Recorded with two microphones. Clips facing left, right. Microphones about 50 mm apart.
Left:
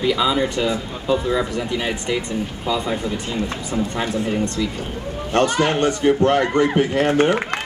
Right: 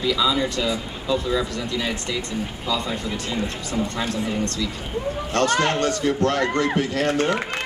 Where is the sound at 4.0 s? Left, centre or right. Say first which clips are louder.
Left 3 dB; left.